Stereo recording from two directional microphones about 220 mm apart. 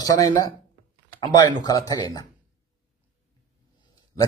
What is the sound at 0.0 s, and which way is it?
A man's voice, 15° left (ahead or behind).